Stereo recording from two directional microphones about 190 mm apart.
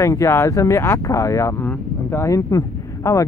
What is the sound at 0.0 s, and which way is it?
Speech, 15° left (ahead or behind).